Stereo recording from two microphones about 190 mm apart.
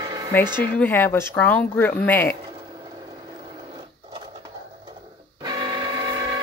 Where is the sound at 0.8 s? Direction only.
10° left (ahead or behind).